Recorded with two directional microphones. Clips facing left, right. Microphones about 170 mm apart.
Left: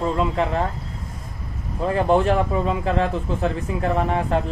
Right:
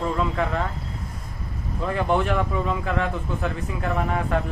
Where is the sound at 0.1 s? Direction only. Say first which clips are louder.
Left 3 dB; 25° left (ahead or behind).